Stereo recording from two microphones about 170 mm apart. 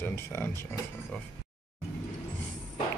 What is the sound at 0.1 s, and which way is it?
Speech, 15° left (ahead or behind).